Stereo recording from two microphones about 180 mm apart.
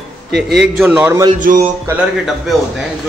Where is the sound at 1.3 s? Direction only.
45° right (ahead or behind).